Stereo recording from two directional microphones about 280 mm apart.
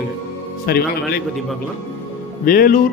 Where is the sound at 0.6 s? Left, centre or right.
Left.